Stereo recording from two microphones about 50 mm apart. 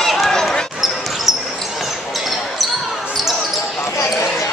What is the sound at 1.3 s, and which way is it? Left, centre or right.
Basketball bounce, centre.